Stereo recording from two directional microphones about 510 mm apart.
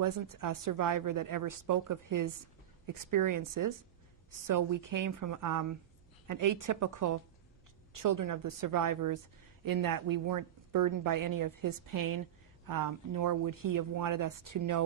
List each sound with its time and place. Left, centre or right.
0.0 s a woman's voice: right